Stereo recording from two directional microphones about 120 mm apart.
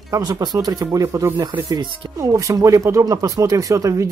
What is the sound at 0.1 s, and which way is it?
Speech, 35° right (ahead or behind).